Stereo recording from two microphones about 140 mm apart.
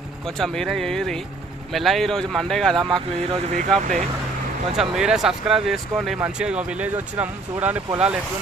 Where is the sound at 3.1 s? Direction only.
45° right (ahead or behind).